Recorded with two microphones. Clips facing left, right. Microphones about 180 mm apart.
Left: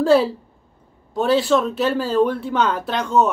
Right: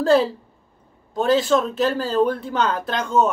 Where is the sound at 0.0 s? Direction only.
5° left (ahead or behind).